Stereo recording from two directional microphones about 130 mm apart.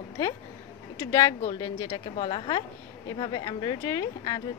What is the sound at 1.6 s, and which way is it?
Speech, 40° left (ahead or behind).